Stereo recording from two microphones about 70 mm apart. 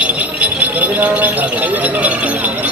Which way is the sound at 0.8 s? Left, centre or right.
Right.